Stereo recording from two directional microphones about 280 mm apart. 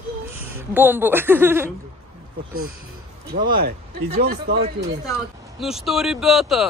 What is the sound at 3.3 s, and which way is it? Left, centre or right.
Speech, right.